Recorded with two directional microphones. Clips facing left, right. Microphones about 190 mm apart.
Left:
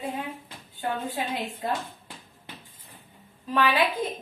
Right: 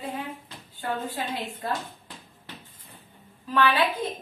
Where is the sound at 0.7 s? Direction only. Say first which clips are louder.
Left 1 dB; 20° left (ahead or behind).